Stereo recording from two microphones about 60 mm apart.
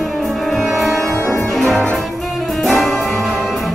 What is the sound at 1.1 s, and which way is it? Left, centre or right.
Music, left.